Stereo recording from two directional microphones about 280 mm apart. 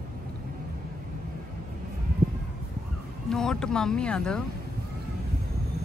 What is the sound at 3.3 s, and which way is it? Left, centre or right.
Speech, centre.